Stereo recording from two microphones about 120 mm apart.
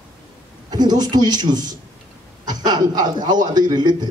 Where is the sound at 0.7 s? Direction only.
35° right (ahead or behind).